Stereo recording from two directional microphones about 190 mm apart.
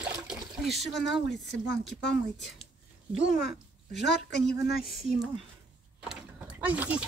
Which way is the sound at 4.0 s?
65° left (ahead or behind).